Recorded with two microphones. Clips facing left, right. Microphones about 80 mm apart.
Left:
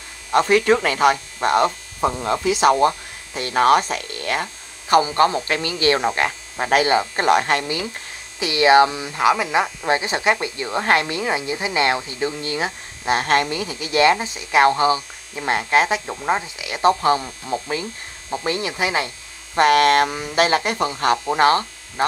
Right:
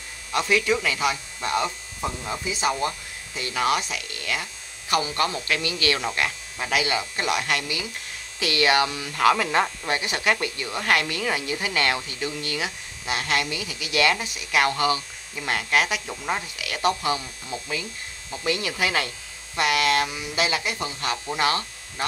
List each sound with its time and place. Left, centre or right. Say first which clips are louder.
0.3 s speech: left 7 dB; left
2.0 s speech: left 9 dB; left
2.9 s speech: left 6 dB; left
8.4 s a woman's voice: left 8 dB; left
9.8 s a woman's voice: left 5 dB; left
19.5 s speech: left 8 dB; left